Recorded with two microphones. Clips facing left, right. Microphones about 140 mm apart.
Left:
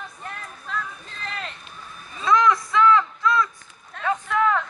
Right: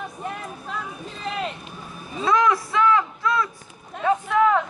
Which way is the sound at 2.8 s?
15° right (ahead or behind).